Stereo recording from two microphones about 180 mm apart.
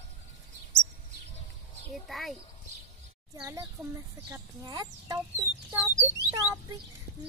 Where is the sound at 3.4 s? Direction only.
20° right (ahead or behind).